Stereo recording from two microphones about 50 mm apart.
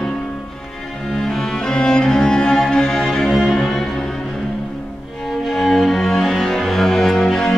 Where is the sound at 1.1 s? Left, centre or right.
Centre.